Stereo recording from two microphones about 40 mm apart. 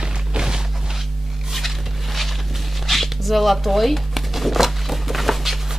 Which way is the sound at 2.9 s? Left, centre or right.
Centre.